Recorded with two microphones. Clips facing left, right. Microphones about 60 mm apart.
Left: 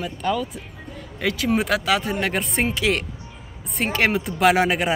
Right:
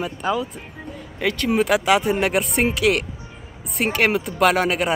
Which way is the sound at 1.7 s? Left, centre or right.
Centre.